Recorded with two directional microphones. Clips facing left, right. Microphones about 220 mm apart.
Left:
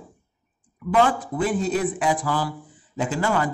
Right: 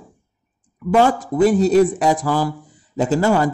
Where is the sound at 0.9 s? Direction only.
40° right (ahead or behind).